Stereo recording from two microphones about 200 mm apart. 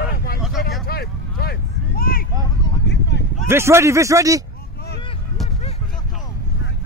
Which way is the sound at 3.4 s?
10° right (ahead or behind).